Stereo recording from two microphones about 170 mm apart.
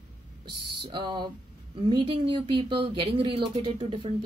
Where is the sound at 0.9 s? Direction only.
30° right (ahead or behind).